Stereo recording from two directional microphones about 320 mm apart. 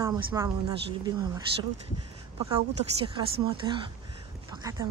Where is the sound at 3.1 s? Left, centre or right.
Centre.